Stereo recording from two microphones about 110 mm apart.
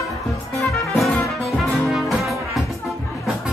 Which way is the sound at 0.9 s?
Centre (ahead or behind).